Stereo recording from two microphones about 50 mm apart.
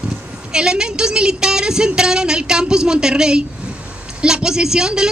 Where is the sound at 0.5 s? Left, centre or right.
Centre.